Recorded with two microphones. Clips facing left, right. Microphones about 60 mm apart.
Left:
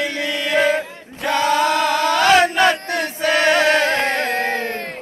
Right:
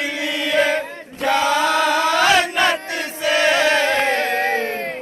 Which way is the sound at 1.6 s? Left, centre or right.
Right.